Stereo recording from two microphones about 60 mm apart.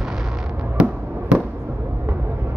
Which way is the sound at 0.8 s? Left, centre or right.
Centre.